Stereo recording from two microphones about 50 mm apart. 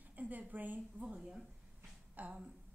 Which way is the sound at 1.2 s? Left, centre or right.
Centre.